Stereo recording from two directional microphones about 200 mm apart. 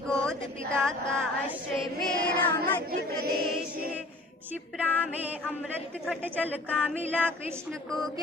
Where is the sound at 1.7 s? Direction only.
5° left (ahead or behind).